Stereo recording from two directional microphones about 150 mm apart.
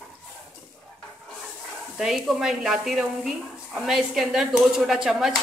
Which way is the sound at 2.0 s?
Centre (ahead or behind).